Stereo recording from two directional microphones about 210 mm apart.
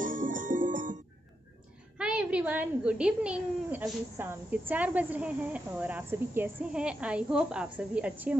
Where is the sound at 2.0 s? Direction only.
5° right (ahead or behind).